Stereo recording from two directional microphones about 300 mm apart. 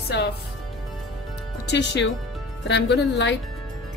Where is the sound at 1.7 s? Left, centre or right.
Left.